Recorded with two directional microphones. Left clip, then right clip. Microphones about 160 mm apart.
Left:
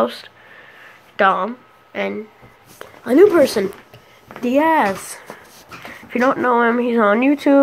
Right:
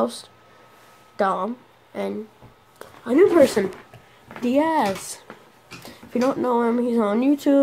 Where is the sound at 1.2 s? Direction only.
25° left (ahead or behind).